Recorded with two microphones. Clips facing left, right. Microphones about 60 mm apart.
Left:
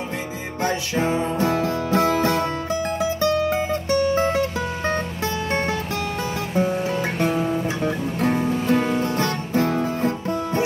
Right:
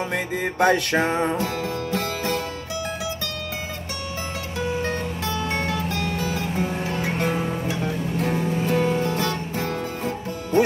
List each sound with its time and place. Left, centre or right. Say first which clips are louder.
0.6 s music: right 4 dB; right
1.4 s music: left 5 dB; left
8.7 s music: left 1 dB; left